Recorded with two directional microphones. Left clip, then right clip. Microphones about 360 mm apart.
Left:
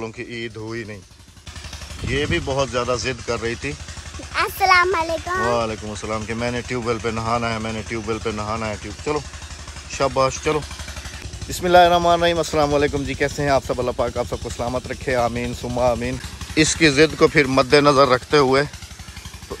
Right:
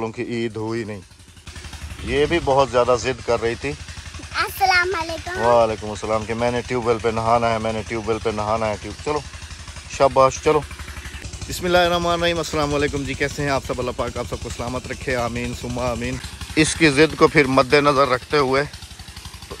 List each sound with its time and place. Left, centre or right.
0.0 s speech: centre
2.0 s speech: centre
4.3 s a child's voice: centre
5.5 s speech: centre